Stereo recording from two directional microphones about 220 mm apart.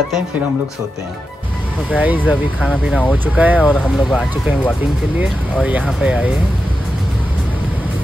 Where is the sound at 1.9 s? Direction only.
5° right (ahead or behind).